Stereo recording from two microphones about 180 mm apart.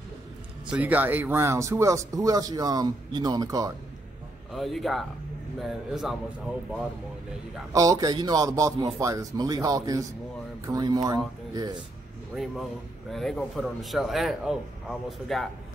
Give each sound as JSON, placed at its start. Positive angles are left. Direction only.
{"t": 0.7, "sound": "speech", "side_deg": -10}
{"t": 4.5, "sound": "speech", "side_deg": 0}
{"t": 7.7, "sound": "speech", "side_deg": -20}
{"t": 13.1, "sound": "speech", "side_deg": 0}